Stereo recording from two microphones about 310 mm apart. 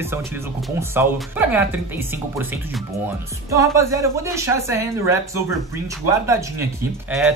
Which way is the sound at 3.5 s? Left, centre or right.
Centre.